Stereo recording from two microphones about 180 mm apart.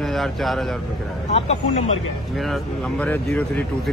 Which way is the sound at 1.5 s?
40° left (ahead or behind).